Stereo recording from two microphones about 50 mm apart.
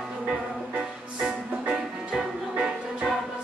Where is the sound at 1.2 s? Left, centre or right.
Centre.